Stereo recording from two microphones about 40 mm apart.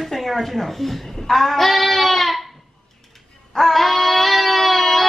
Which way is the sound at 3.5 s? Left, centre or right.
Centre.